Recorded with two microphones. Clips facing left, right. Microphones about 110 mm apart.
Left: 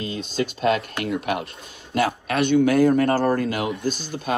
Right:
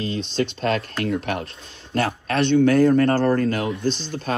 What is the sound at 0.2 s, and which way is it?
Speech, 5° left (ahead or behind).